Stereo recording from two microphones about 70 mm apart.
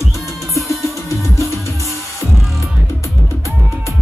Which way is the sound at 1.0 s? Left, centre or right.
Left.